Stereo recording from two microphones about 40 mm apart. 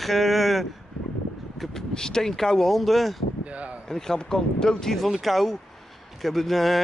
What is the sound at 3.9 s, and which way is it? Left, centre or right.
Speech, centre.